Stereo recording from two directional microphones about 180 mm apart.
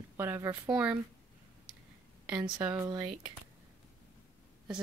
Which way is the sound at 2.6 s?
10° right (ahead or behind).